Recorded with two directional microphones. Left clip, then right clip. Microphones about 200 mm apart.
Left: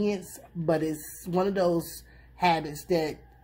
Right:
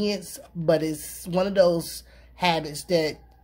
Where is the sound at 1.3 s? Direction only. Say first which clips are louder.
Right 5 dB; 25° right (ahead or behind).